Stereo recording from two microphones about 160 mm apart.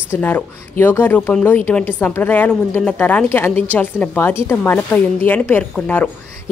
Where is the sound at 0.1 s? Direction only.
10° left (ahead or behind).